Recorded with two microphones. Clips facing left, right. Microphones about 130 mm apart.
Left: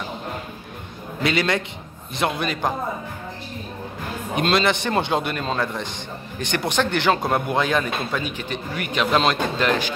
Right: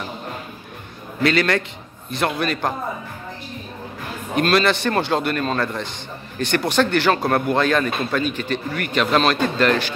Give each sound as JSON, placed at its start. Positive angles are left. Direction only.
{"t": 1.2, "sound": "speech", "side_deg": 20}
{"t": 4.4, "sound": "speech", "side_deg": 20}